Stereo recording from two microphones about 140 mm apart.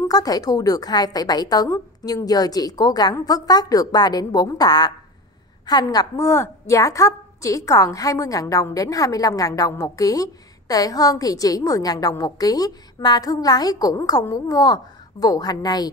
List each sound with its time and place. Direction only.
0.1 s a woman's voice: 25° left (ahead or behind)